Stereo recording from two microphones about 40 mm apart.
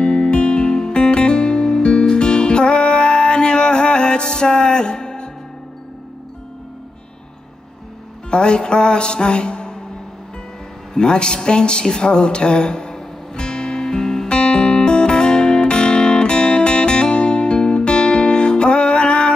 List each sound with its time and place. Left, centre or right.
0.0 s music: left
8.3 s music: left
11.0 s speech: centre
12.9 s music: centre